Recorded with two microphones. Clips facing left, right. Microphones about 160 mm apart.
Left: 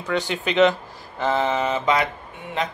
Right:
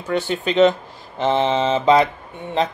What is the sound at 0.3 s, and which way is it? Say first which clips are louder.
Speech: right 3 dB; 40° right (ahead or behind).